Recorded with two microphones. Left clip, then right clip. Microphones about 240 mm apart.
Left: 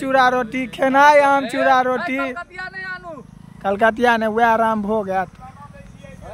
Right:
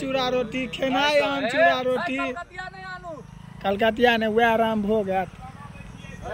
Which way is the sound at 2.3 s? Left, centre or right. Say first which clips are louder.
Left 5 dB; right.